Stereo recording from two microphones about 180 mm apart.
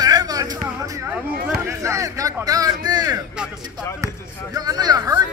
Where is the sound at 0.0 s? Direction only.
20° right (ahead or behind).